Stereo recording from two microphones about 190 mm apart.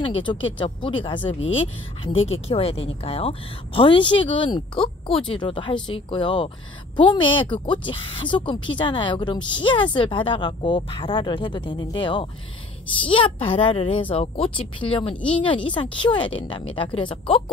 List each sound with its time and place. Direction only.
0.0 s a woman's voice: 25° left (ahead or behind)